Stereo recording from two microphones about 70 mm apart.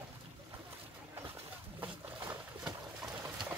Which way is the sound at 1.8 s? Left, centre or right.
Right.